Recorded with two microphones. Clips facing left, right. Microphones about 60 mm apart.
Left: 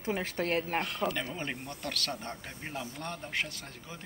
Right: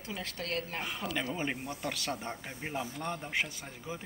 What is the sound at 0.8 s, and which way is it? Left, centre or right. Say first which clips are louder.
Speech: left 2 dB; centre.